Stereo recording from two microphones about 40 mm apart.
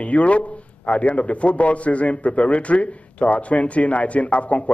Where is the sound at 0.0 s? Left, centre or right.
Left.